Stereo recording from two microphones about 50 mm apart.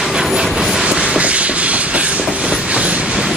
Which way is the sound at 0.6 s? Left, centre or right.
Centre.